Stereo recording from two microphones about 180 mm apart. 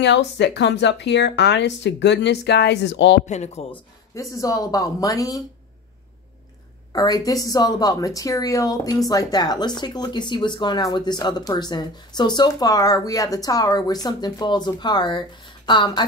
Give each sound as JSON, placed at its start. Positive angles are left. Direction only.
{"t": 0.0, "sound": "speech", "side_deg": 75}
{"t": 3.3, "sound": "speech", "side_deg": 40}
{"t": 3.7, "sound": "a woman's voice", "side_deg": 15}
{"t": 6.9, "sound": "a woman's voice", "side_deg": 20}